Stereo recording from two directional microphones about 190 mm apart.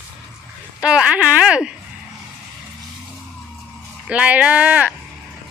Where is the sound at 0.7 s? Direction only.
5° right (ahead or behind).